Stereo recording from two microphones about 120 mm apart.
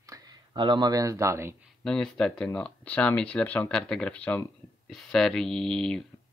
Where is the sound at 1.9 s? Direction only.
5° left (ahead or behind).